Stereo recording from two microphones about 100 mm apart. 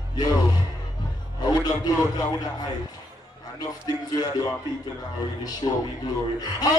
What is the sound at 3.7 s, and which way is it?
Speech, 40° left (ahead or behind).